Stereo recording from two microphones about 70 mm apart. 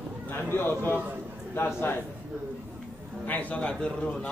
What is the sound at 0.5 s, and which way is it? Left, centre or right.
A man's voice, left.